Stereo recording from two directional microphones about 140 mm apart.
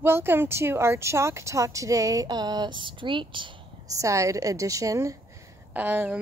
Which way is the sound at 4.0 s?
20° right (ahead or behind).